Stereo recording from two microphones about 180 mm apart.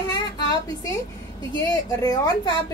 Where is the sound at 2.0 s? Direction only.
20° left (ahead or behind).